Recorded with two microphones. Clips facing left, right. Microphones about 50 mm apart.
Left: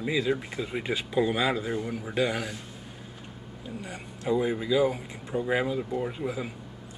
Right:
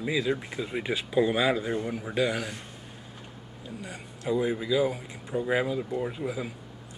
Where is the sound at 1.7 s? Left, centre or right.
Centre.